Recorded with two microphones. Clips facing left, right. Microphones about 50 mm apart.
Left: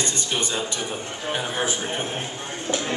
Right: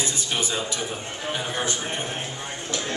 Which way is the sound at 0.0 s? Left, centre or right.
Centre.